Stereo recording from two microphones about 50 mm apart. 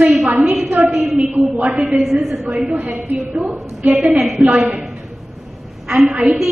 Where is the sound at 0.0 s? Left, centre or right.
Right.